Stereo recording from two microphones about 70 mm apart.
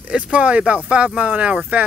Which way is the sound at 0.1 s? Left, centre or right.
Centre.